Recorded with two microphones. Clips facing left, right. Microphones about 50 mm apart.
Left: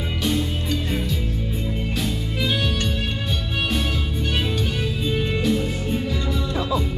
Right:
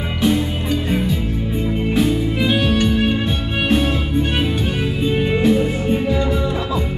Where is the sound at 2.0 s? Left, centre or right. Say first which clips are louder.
Right 10 dB; right.